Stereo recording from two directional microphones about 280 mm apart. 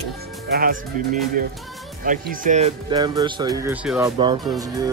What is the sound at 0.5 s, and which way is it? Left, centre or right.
Speech, right.